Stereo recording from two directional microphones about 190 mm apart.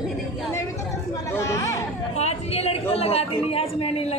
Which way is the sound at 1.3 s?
15° left (ahead or behind).